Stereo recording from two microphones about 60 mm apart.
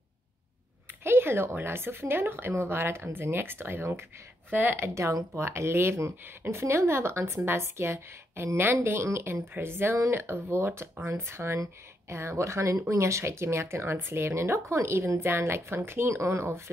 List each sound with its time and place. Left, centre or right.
1.0 s speech: right
9.3 s speech: right